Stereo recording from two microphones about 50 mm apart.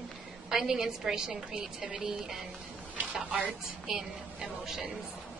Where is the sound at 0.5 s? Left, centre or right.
Centre.